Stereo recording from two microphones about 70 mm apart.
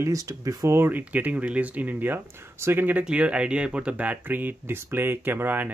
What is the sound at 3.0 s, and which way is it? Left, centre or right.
Speech, centre.